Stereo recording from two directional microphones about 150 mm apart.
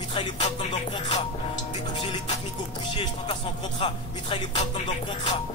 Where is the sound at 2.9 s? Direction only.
35° left (ahead or behind).